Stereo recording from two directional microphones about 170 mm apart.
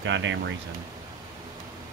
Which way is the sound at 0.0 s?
90° right.